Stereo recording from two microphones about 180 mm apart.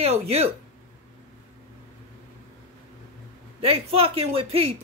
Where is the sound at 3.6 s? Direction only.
30° right (ahead or behind).